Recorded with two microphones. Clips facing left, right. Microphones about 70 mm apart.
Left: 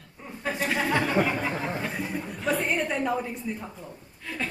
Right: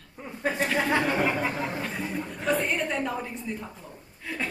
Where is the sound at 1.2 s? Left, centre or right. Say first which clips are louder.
Even; centre.